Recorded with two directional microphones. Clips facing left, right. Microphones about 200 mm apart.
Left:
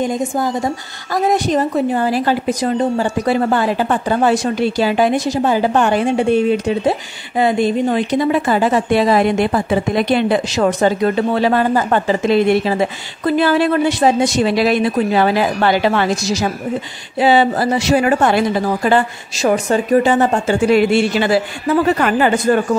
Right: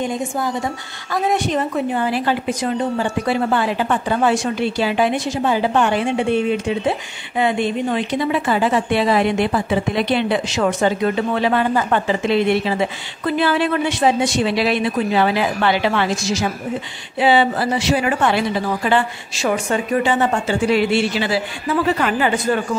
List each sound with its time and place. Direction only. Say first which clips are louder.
1.1 s a woman's voice: left 4 dB; 40° left (ahead or behind)